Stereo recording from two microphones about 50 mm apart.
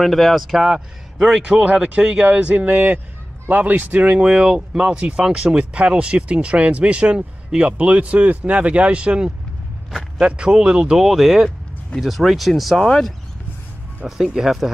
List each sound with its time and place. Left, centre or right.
0.0 s a man's voice: centre
1.4 s speech: right
11.0 s a man's voice: centre
14.0 s speech: centre